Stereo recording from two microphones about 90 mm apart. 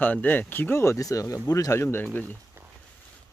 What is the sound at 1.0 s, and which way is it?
Speech, 40° left (ahead or behind).